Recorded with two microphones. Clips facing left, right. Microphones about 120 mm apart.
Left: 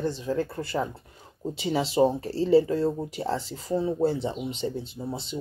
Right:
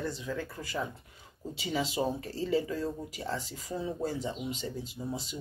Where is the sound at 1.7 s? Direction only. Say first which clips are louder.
Left 8 dB; 35° left (ahead or behind).